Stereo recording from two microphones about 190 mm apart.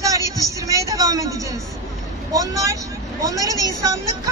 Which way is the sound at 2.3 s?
15° right (ahead or behind).